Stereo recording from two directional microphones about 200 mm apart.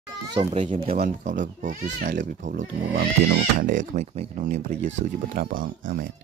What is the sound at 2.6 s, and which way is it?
Speech, 60° right (ahead or behind).